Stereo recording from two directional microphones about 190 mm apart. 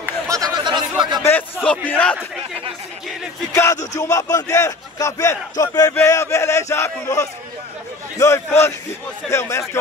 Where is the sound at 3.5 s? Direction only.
15° left (ahead or behind).